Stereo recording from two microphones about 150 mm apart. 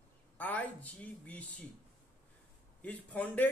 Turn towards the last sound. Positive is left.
turn(degrees=10)  # may be behind; listen again after turning